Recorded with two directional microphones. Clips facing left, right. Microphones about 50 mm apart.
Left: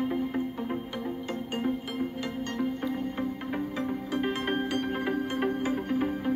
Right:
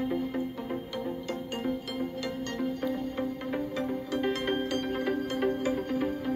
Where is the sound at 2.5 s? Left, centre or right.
Centre.